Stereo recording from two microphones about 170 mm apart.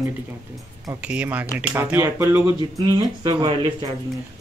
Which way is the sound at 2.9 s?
25° right (ahead or behind).